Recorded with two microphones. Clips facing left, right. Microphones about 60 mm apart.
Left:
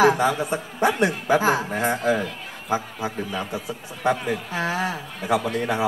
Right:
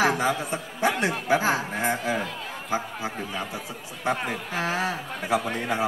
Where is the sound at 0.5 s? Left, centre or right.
Left.